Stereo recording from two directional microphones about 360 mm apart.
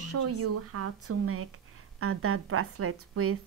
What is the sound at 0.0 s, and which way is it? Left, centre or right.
Speech, right.